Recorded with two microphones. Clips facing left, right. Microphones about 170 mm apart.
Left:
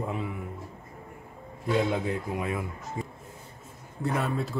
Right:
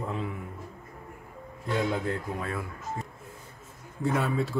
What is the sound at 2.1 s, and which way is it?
Speech, 15° left (ahead or behind).